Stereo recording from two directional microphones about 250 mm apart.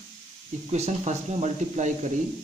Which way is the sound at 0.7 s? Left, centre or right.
Right.